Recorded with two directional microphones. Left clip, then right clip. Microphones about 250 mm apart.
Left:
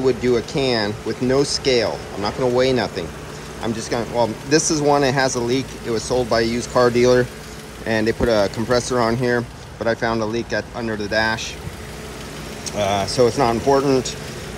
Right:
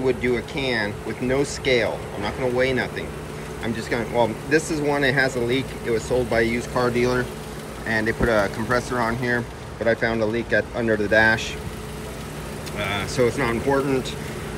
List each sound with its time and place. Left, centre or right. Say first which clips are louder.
0.0 s speech: left 4 dB; centre
12.7 s speech: left 6 dB; centre